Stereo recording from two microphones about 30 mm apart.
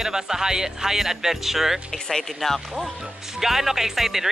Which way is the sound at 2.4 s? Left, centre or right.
Centre.